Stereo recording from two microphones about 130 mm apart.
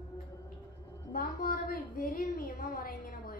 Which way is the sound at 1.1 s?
90° left.